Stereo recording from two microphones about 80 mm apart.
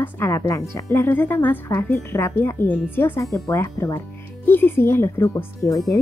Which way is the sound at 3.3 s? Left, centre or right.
Left.